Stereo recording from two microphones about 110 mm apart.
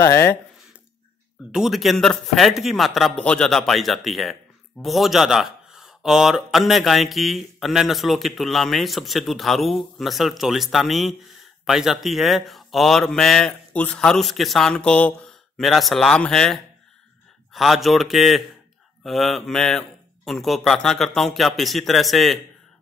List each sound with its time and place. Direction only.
0.0 s speech: 20° left (ahead or behind)
1.5 s speech: 5° right (ahead or behind)